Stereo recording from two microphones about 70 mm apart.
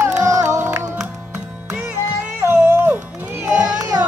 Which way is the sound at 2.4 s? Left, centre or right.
Right.